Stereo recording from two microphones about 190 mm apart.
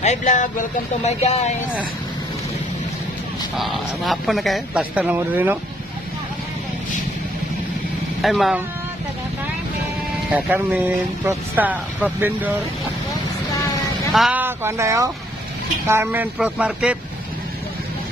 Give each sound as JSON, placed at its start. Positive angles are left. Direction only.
{"t": 0.0, "sound": "speech", "side_deg": 40}
{"t": 3.5, "sound": "speech", "side_deg": 0}
{"t": 8.2, "sound": "speech", "side_deg": 0}
{"t": 10.3, "sound": "speech", "side_deg": -10}
{"t": 14.1, "sound": "speech", "side_deg": -5}